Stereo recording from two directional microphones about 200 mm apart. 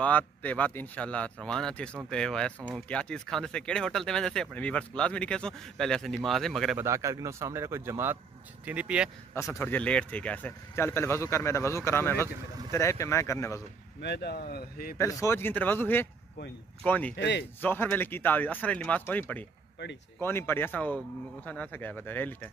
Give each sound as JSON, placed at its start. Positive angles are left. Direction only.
{"t": 0.0, "sound": "speech", "side_deg": 5}
{"t": 6.8, "sound": "speech", "side_deg": -15}
{"t": 9.3, "sound": "speech", "side_deg": 15}
{"t": 14.0, "sound": "speech", "side_deg": 55}
{"t": 15.0, "sound": "speech", "side_deg": 15}
{"t": 17.2, "sound": "speech", "side_deg": 60}
{"t": 17.6, "sound": "speech", "side_deg": 10}